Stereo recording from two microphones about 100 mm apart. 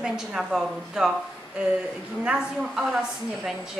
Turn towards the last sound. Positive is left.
turn(degrees=-5)  # may be behind; listen again after turning